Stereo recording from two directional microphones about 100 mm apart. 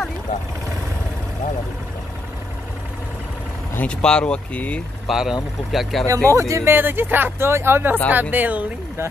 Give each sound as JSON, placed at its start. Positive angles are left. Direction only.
{"t": 3.7, "sound": "speech", "side_deg": 10}
{"t": 5.0, "sound": "speech", "side_deg": -5}
{"t": 6.0, "sound": "speech", "side_deg": -30}